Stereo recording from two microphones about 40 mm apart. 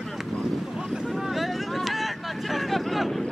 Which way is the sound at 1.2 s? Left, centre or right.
Centre.